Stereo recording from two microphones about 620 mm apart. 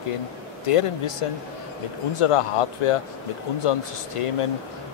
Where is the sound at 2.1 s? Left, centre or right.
Left.